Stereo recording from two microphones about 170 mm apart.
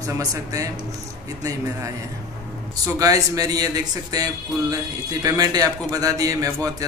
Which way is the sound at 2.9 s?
20° right (ahead or behind).